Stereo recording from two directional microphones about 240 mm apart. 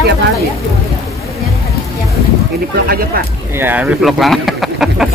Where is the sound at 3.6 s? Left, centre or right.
Centre.